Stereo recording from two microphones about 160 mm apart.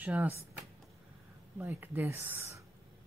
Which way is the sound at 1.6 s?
10° right (ahead or behind).